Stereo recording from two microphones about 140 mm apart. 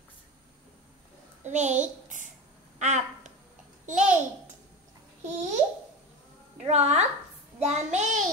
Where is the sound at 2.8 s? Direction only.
55° right (ahead or behind).